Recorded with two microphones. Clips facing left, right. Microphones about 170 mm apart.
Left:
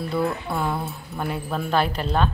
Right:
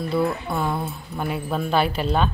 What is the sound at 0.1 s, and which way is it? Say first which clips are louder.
Speech: right 2 dB; 5° left (ahead or behind).